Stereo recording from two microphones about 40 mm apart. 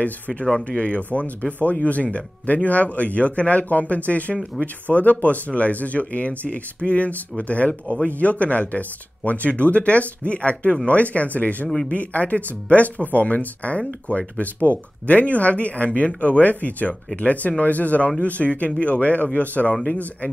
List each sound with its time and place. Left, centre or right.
0.7 s speech: left
4.9 s speech: centre
5.2 s speech: left